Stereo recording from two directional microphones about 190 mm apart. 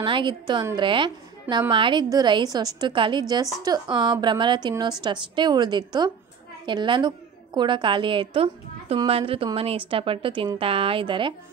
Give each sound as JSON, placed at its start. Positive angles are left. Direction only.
{"t": 0.0, "sound": "a woman's voice", "side_deg": -25}